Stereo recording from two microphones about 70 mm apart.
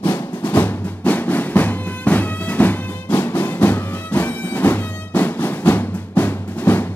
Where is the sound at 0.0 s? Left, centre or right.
Left.